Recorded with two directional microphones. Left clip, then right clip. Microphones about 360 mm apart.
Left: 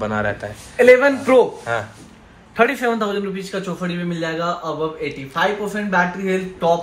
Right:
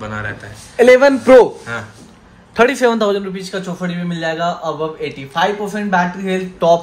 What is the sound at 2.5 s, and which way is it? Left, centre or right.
Speech, right.